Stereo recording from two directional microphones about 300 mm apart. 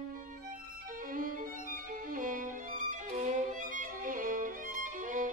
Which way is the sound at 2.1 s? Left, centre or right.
Right.